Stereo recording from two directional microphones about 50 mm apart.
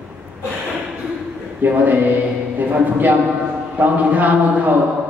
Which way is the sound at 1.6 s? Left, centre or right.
Right.